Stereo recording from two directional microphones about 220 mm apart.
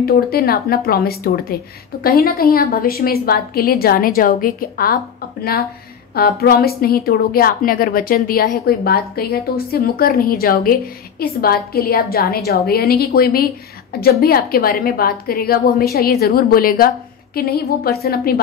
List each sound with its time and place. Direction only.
0.0 s a woman's voice: 45° left (ahead or behind)